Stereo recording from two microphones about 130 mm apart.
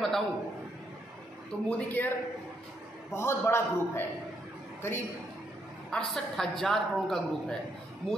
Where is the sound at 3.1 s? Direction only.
20° left (ahead or behind).